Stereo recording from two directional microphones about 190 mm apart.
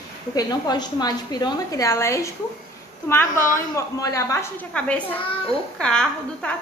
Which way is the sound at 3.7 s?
15° left (ahead or behind).